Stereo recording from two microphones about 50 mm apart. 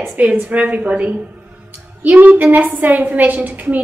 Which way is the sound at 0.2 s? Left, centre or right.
Right.